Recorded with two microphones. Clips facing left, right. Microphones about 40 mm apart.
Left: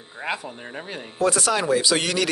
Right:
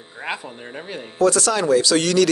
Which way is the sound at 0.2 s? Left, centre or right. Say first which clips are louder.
Even; centre.